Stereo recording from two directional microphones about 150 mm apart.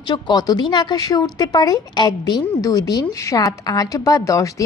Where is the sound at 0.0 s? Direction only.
30° left (ahead or behind).